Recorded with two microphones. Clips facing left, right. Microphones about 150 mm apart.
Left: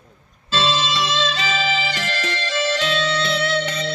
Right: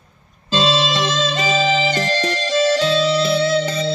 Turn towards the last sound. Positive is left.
turn(degrees=-30)  # may be behind; listen again after turning